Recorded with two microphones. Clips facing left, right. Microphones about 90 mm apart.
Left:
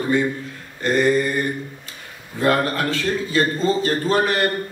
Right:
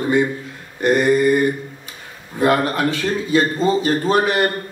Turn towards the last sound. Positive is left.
turn(degrees=-20)  # may be behind; listen again after turning